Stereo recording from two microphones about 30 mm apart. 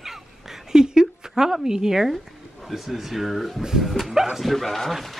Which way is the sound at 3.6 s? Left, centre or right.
Centre.